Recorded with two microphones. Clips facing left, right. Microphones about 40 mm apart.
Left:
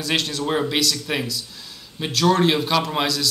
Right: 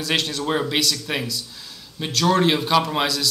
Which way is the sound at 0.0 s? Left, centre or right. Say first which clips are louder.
Even; centre.